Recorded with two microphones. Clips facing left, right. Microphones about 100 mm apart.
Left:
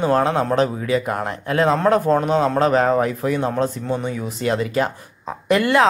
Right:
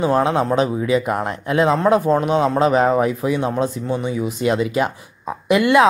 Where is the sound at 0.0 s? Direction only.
10° right (ahead or behind).